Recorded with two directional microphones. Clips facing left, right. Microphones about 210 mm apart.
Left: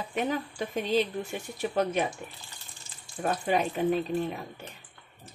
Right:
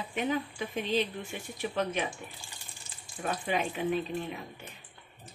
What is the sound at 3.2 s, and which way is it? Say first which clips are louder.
Speech: left 4 dB; 40° left (ahead or behind).